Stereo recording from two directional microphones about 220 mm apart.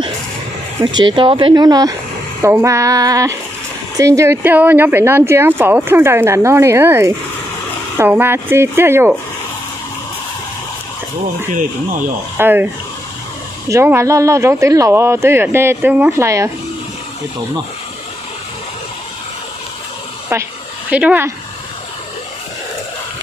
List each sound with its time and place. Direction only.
0.9 s speech: 20° right (ahead or behind)
12.4 s speech: 10° right (ahead or behind)
13.7 s speech: 10° right (ahead or behind)
20.9 s speech: 5° right (ahead or behind)